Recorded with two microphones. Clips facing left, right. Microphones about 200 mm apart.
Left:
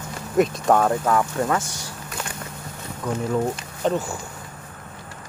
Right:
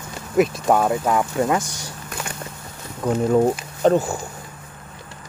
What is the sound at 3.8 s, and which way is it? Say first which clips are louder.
Speech: right 6 dB; 45° right (ahead or behind).